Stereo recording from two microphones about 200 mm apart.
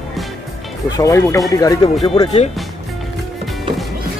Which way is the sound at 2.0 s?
25° left (ahead or behind).